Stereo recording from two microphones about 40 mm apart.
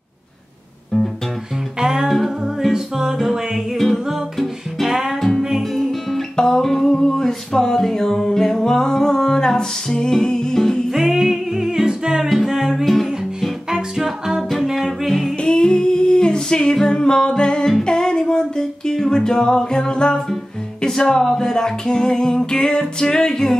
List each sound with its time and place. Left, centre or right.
1.8 s music: centre
2.0 s music: centre
2.4 s music: centre
3.7 s music: centre
4.8 s music: centre
5.6 s music: centre
6.3 s a sound: centre
10.9 s music: centre
12.8 s music: centre
13.7 s music: centre
15.4 s humming: left
17.8 s music: centre
20.8 s a sound: centre